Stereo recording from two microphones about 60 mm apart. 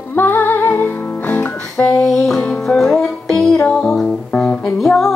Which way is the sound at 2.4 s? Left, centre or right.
Centre.